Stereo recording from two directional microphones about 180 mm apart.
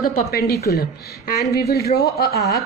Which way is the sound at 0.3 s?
60° left (ahead or behind).